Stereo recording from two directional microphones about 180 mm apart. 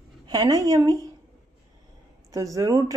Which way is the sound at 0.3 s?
25° right (ahead or behind).